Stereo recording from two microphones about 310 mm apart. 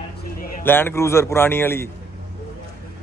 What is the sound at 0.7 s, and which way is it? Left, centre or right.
Speech, centre.